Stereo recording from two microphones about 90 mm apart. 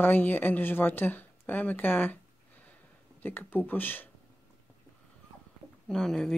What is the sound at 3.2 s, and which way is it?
Speech, 20° left (ahead or behind).